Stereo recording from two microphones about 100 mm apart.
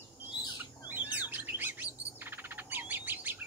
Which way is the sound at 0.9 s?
20° right (ahead or behind).